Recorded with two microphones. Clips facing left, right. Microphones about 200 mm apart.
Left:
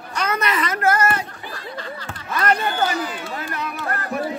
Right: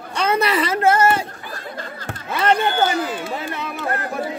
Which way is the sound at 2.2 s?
30° right (ahead or behind).